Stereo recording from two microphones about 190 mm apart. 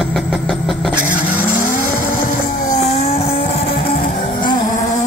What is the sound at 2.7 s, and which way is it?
Vehicle, 40° left (ahead or behind).